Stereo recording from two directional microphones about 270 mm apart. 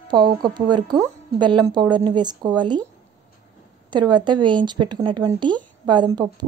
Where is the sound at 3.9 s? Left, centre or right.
Centre.